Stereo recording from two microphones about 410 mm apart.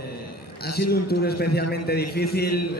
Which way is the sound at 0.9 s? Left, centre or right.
Left.